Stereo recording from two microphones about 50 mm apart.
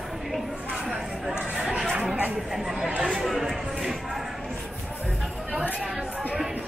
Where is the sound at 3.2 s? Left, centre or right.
Centre.